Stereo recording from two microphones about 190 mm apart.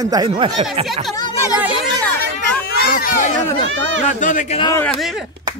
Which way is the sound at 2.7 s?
50° left (ahead or behind).